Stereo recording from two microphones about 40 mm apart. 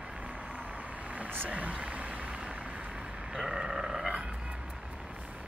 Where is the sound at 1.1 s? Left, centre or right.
Right.